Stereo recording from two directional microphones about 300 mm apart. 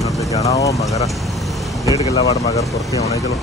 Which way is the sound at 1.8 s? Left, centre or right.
Centre.